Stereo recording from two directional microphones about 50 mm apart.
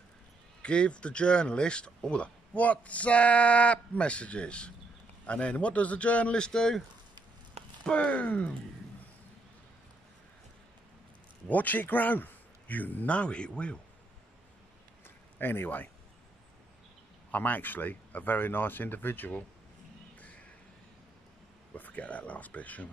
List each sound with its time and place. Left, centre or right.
0.6 s speech: left
6.4 s speech: centre
7.8 s speech: left
11.4 s a man's voice: left
15.0 s a sound: left
17.3 s a man's voice: left
20.2 s a sound: left
21.7 s a man's voice: left